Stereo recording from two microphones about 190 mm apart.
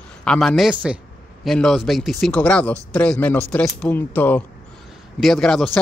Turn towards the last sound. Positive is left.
turn(degrees=5)  # may be behind; listen again after turning